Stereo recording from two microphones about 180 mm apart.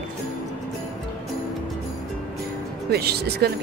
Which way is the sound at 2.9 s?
60° right (ahead or behind).